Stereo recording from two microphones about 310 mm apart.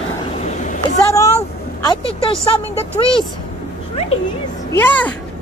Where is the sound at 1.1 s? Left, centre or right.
Centre.